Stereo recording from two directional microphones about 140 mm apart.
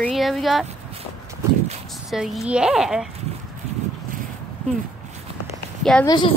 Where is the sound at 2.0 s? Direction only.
Centre (ahead or behind).